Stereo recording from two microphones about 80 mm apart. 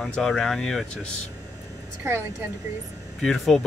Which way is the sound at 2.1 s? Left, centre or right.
Right.